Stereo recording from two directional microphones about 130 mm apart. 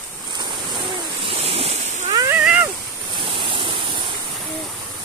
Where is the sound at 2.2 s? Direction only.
10° right (ahead or behind).